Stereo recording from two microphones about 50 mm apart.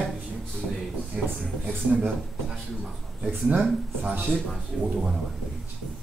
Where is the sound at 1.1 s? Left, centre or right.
Right.